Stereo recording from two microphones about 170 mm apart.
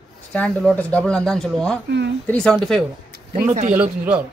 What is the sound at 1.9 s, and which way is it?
Speech, 90° right.